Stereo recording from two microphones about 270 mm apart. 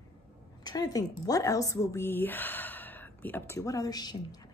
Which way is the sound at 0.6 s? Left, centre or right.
Centre.